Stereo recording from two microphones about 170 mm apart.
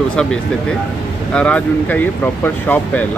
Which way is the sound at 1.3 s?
5° left (ahead or behind).